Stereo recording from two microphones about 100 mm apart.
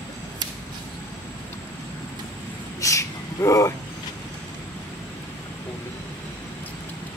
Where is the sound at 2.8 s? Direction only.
30° left (ahead or behind).